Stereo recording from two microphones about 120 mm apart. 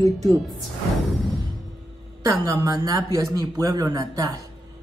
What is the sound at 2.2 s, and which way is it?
A man's voice, 25° right (ahead or behind).